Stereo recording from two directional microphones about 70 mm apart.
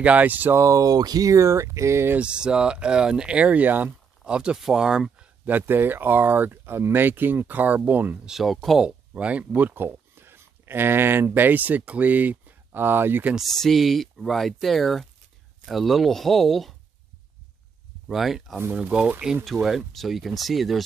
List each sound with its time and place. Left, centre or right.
0.0 s speech: right
0.6 s speech: right
2.1 s speech: centre
5.4 s speech: right
8.3 s speech: centre
8.8 s speech: centre
13.5 s speech: centre
18.0 s speech: centre
18.7 s speech: centre
19.4 s speech: centre